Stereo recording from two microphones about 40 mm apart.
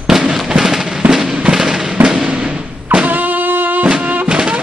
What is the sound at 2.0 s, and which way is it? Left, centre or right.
Music, right.